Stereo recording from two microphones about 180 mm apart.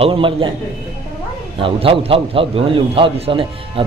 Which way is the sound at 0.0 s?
30° right (ahead or behind).